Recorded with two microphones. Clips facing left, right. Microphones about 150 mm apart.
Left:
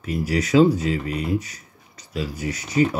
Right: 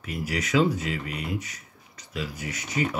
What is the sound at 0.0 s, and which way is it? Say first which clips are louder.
Speech: left 7 dB; 35° left (ahead or behind).